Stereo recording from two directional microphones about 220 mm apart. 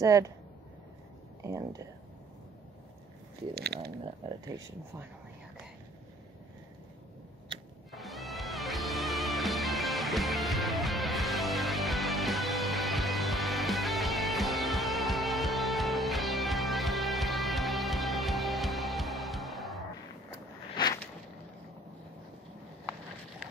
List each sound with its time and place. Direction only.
0.0 s speech: 15° right (ahead or behind)
1.4 s speech: 15° right (ahead or behind)
3.5 s speech: 45° right (ahead or behind)
7.9 s music: centre (ahead or behind)
20.2 s a sound: 15° left (ahead or behind)